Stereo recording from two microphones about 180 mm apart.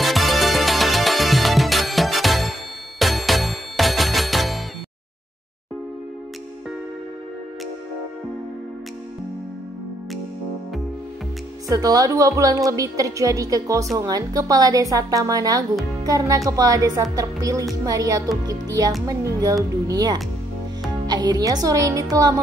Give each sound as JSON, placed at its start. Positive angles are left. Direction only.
{"t": 0.0, "sound": "music", "side_deg": 0}
{"t": 11.7, "sound": "a woman's voice", "side_deg": -20}